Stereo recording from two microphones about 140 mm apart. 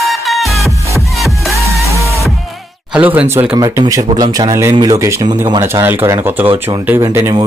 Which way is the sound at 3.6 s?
25° right (ahead or behind).